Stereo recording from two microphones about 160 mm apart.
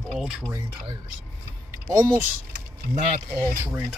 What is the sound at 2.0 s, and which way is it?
Speech, 15° right (ahead or behind).